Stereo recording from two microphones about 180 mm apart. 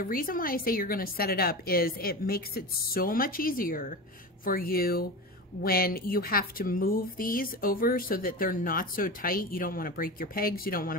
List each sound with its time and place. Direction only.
0.0 s speech: 50° left (ahead or behind)